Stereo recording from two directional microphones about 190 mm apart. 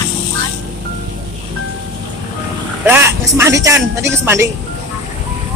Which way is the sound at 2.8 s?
10° right (ahead or behind).